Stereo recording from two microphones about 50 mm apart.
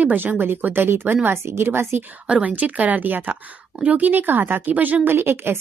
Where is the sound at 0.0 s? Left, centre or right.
Right.